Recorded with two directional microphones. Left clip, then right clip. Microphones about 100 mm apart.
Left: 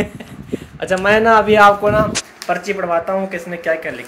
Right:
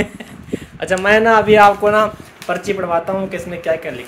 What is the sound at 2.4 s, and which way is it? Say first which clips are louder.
Speech: right 1 dB; 30° right (ahead or behind).